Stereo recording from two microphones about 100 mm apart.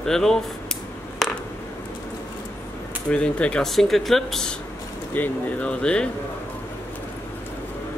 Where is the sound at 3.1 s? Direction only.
10° left (ahead or behind).